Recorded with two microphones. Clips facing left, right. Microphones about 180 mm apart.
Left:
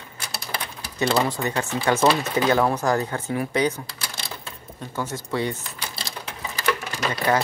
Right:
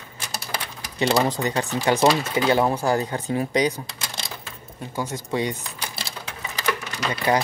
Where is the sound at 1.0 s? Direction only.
15° right (ahead or behind).